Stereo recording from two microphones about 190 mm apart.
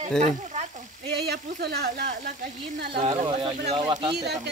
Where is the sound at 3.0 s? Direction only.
30° right (ahead or behind).